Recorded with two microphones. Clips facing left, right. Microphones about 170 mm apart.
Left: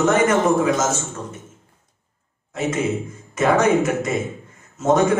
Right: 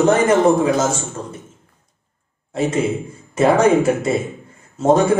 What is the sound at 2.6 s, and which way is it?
A man's voice, 30° right (ahead or behind).